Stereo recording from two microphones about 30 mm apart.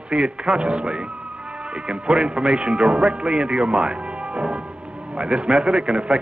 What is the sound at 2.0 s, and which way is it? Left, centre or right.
A man's voice, right.